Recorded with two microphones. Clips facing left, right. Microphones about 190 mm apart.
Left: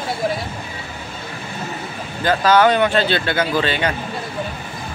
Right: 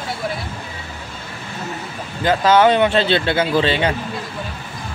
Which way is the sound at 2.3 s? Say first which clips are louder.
Right 1 dB; 25° right (ahead or behind).